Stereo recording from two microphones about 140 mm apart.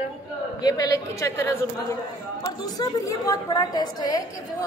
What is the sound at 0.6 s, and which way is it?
A woman's voice, 25° left (ahead or behind).